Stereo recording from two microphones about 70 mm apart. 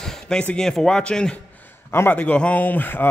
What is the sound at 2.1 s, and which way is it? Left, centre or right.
Speech, centre.